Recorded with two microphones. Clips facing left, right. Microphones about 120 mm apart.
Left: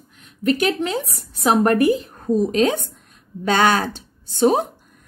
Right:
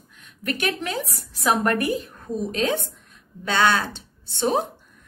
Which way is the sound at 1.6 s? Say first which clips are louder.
Left 6 dB; 35° left (ahead or behind).